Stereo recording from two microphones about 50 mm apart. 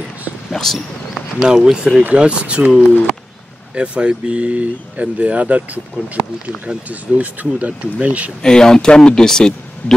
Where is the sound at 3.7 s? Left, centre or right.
Right.